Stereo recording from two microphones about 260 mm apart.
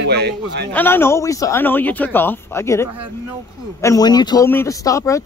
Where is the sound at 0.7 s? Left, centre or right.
Centre.